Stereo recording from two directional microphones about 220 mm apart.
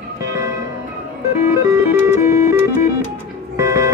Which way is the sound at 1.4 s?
15° right (ahead or behind).